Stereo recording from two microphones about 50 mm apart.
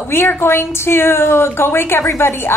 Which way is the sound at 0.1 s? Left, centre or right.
Left.